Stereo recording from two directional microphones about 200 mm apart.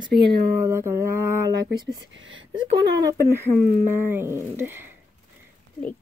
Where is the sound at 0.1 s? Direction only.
55° right (ahead or behind).